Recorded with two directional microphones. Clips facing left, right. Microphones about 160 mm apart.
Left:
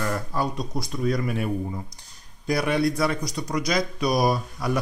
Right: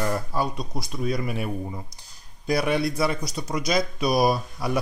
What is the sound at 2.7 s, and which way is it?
Speech, 5° right (ahead or behind).